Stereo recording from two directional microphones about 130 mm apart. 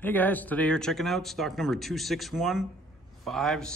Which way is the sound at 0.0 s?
15° left (ahead or behind).